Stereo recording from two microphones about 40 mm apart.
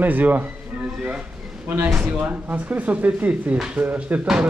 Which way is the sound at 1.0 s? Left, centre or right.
Right.